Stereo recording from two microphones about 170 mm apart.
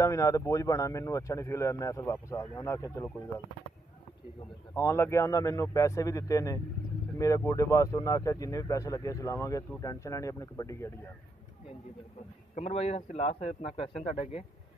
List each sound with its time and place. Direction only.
0.0 s speech: 20° left (ahead or behind)
4.7 s speech: 15° left (ahead or behind)
12.5 s a man's voice: 40° left (ahead or behind)